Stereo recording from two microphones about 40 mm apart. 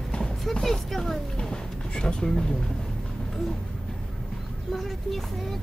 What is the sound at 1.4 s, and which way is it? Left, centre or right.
Music, left.